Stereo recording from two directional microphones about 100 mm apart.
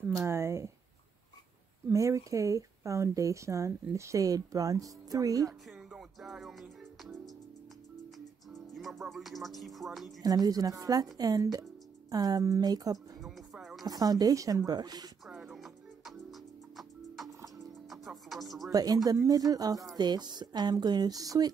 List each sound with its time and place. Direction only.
0.2 s speech: 30° right (ahead or behind)
1.9 s speech: 30° right (ahead or behind)
5.7 s music: 5° right (ahead or behind)
8.7 s speech: centre (ahead or behind)
10.2 s speech: 40° right (ahead or behind)
13.2 s music: centre (ahead or behind)
13.8 s speech: 40° right (ahead or behind)
15.5 s music: centre (ahead or behind)
18.7 s speech: 40° right (ahead or behind)